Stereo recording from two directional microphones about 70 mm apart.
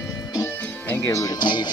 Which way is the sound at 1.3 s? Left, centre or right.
Left.